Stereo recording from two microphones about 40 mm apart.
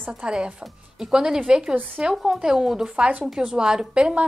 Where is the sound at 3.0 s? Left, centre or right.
Right.